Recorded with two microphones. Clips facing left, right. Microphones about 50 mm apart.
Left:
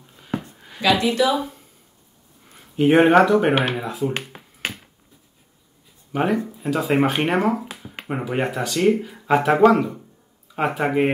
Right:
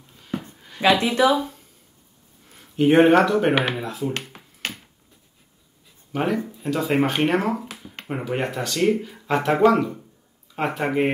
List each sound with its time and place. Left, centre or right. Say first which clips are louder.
1.0 s speech: even; right
2.7 s speech: left 1 dB; centre
4.6 s finger snapping: left 2 dB; centre
6.1 s speech: left 2 dB; centre